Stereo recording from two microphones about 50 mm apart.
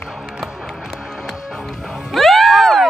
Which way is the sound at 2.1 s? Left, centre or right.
Centre.